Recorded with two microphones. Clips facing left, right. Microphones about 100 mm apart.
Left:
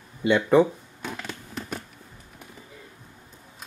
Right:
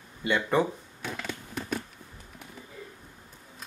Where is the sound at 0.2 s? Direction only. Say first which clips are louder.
Left 7 dB; 15° left (ahead or behind).